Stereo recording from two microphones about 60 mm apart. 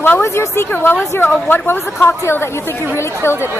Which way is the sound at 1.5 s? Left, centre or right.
Left.